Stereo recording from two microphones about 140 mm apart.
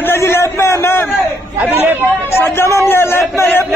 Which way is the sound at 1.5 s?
10° right (ahead or behind).